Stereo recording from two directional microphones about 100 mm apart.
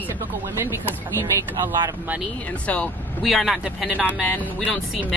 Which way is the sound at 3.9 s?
10° right (ahead or behind).